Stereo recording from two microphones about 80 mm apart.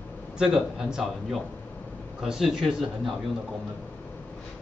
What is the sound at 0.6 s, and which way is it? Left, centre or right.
A man's voice, centre.